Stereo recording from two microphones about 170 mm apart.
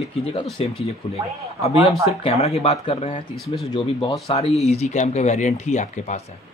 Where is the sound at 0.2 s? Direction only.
35° left (ahead or behind).